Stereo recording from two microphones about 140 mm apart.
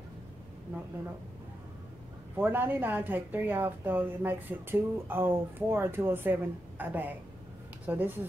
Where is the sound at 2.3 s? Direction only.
15° right (ahead or behind).